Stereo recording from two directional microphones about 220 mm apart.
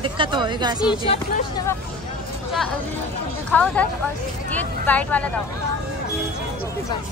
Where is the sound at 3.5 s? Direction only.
5° left (ahead or behind).